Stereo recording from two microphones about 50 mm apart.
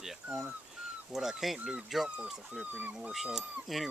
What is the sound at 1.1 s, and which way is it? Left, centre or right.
Speech, centre.